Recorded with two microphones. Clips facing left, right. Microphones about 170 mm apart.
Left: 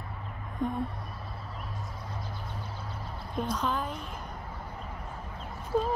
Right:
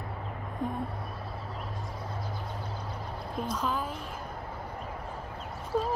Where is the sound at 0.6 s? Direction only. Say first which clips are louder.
Left 2 dB; 5° right (ahead or behind).